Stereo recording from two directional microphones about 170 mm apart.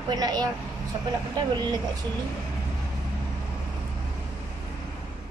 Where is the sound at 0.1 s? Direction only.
20° right (ahead or behind).